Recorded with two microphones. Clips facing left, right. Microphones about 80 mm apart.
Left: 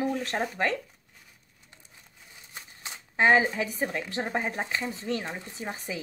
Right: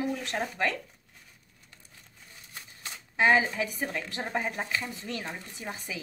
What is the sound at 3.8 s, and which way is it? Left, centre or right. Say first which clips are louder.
A woman's voice: left 3 dB; left.